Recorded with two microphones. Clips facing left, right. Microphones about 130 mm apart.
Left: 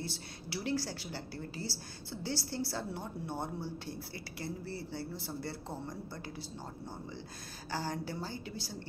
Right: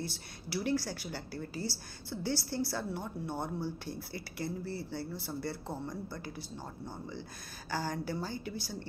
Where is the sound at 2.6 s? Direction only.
30° left (ahead or behind).